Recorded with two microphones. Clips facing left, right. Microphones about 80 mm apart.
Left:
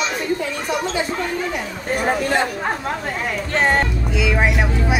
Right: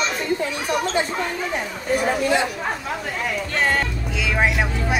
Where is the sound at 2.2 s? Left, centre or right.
Left.